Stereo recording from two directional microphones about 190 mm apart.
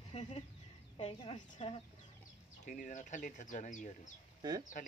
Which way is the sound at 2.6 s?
40° left (ahead or behind).